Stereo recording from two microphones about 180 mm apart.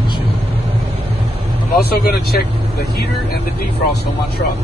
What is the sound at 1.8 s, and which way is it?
Speech, 60° left (ahead or behind).